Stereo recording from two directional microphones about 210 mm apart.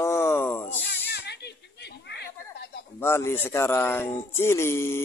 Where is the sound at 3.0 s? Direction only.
10° left (ahead or behind).